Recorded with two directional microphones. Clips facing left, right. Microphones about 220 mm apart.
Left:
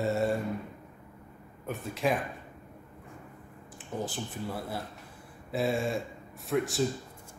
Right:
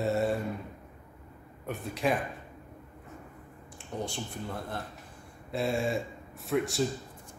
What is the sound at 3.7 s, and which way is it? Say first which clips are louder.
A man's voice: left 1 dB; centre (ahead or behind).